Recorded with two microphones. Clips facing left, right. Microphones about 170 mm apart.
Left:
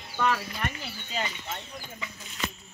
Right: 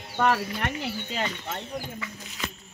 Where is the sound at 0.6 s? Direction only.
65° right (ahead or behind).